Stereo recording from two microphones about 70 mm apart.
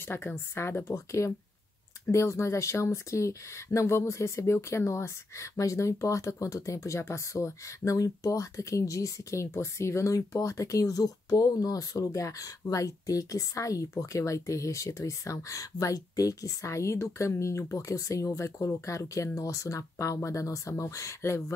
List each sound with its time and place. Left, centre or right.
0.0 s a woman's voice: left